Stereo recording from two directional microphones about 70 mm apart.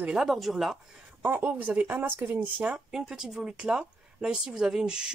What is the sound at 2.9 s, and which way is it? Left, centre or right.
Speech, centre.